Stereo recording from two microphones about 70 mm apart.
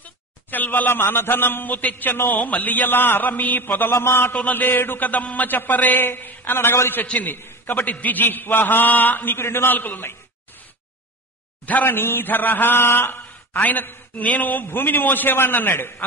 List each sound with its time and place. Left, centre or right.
0.5 s a man's voice: left
3.9 s a man's voice: left
4.3 s a man's voice: left
11.6 s a man's voice: left